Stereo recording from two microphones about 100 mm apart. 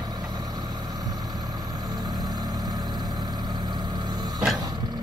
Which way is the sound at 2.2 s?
40° right (ahead or behind).